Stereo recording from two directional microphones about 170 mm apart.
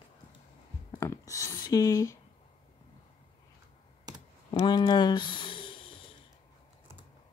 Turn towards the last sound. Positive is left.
turn(degrees=30)  # may be behind; listen again after turning